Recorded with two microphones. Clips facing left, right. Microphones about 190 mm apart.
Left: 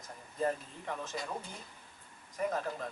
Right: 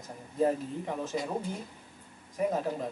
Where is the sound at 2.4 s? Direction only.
15° right (ahead or behind).